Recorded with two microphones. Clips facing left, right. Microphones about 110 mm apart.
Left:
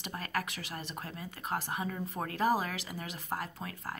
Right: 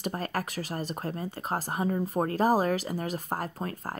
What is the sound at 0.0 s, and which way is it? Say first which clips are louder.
Speech: right 5 dB; 40° right (ahead or behind).